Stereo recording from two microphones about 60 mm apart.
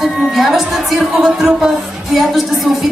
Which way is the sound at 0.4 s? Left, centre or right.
Centre.